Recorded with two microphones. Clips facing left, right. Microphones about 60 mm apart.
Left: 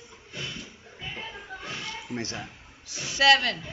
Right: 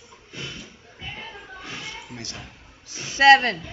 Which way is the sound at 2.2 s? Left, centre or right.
Left.